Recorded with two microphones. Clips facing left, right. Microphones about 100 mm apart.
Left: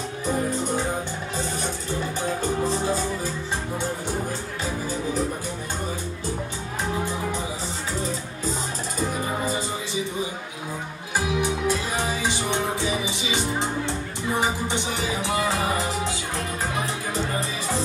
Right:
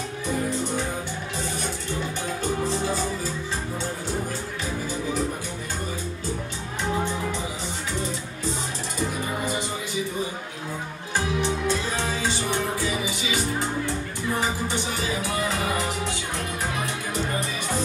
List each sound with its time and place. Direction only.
11.1 s music: 10° left (ahead or behind)
16.8 s music: 30° left (ahead or behind)